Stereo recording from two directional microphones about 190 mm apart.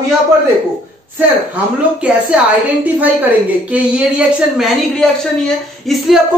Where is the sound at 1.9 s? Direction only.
5° right (ahead or behind).